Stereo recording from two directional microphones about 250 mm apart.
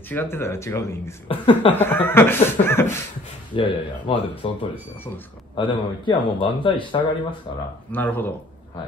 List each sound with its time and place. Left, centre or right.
0.1 s speech: centre
1.7 s speech: centre
3.5 s speech: centre
5.6 s speech: centre
7.9 s speech: centre